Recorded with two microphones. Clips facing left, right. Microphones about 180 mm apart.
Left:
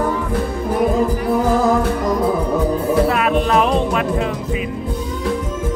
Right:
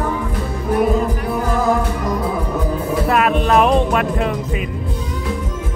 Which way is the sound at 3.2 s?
55° right (ahead or behind).